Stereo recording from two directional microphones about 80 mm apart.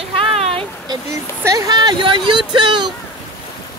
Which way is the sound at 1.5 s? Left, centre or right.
Right.